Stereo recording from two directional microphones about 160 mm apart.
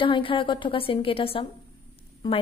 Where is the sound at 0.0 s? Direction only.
35° left (ahead or behind).